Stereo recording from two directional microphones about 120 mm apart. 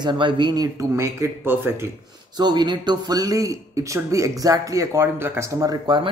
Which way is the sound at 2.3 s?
35° right (ahead or behind).